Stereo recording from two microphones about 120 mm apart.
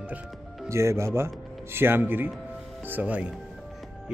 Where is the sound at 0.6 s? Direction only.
25° right (ahead or behind).